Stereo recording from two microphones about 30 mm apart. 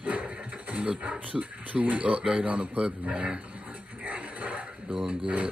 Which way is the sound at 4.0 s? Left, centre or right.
Right.